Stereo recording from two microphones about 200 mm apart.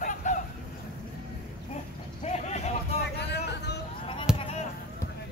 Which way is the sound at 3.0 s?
55° left (ahead or behind).